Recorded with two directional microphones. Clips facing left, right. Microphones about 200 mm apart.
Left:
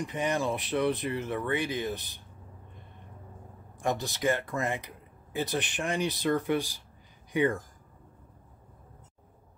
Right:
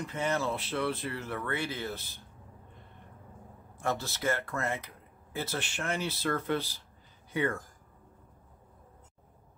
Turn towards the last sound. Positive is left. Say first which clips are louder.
# left 4 dB
turn(degrees=15)  # may be behind; listen again after turning